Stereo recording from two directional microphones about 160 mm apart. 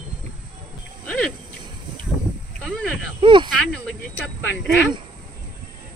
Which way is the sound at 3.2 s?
30° right (ahead or behind).